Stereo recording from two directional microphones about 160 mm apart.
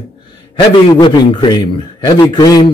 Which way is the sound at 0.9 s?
25° left (ahead or behind).